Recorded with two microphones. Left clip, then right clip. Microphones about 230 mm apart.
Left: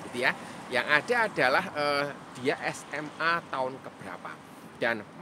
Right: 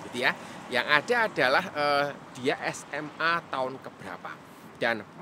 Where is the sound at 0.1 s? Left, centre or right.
Centre.